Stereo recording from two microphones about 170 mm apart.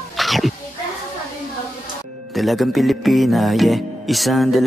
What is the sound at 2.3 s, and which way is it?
Speech, centre (ahead or behind).